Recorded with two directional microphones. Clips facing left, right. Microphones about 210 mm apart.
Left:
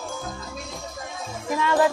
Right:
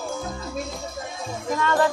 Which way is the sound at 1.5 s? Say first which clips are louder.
Left 1 dB; 10° left (ahead or behind).